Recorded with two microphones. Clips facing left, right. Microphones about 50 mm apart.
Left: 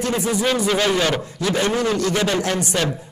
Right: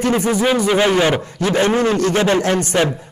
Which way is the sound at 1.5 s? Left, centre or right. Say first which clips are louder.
Right 4 dB; right.